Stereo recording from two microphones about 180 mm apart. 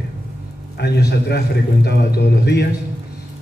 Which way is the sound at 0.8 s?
65° left (ahead or behind).